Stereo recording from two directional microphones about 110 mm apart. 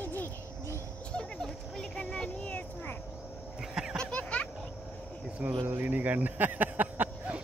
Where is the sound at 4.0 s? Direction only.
10° left (ahead or behind).